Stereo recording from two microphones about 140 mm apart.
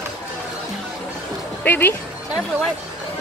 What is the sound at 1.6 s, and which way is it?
Speech, 15° left (ahead or behind).